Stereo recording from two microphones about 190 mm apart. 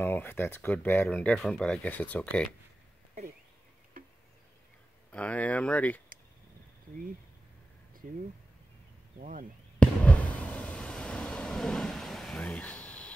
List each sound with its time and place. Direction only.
0.0 s speech: 10° left (ahead or behind)
5.1 s speech: 5° left (ahead or behind)
9.2 s speech: 45° right (ahead or behind)
9.8 s fireworks: 5° left (ahead or behind)